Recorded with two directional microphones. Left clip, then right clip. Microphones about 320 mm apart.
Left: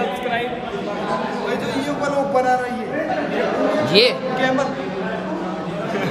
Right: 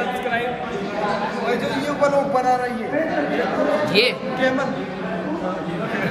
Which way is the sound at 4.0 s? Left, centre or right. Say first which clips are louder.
Left 4 dB; centre.